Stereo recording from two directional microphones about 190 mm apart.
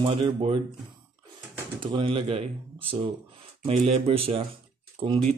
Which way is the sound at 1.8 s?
25° right (ahead or behind).